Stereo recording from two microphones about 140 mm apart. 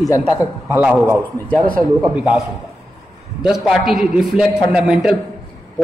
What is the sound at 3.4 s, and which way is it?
A man's voice, centre (ahead or behind).